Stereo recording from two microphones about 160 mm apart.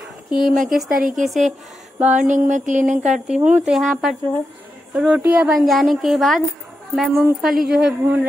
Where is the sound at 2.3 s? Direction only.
50° right (ahead or behind).